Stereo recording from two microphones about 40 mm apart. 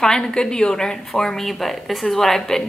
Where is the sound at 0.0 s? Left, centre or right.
Centre.